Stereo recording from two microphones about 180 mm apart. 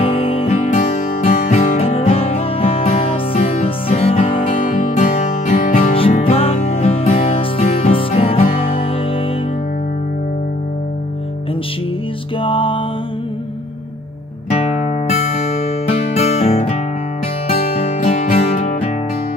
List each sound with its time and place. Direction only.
0.0 s music: 30° left (ahead or behind)
4.7 s music: 45° left (ahead or behind)
5.9 s music: 30° left (ahead or behind)
12.4 s music: 30° left (ahead or behind)
15.0 s music: 35° left (ahead or behind)